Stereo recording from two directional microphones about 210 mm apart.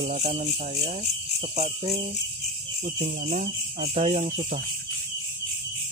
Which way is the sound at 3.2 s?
30° right (ahead or behind).